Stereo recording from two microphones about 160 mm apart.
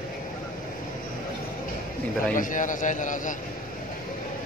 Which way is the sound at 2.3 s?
55° left (ahead or behind).